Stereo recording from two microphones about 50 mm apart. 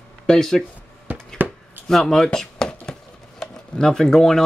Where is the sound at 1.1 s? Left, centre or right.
Right.